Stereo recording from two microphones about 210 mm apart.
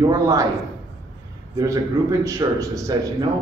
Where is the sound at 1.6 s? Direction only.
15° right (ahead or behind).